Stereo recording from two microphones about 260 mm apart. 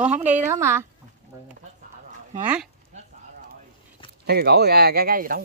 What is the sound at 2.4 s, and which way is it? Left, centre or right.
Speech, centre.